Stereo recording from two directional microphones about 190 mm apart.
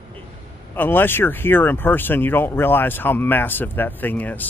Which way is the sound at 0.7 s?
10° left (ahead or behind).